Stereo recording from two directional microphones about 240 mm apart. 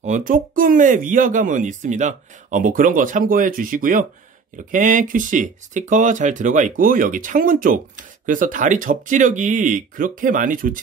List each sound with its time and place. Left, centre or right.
0.0 s speech: right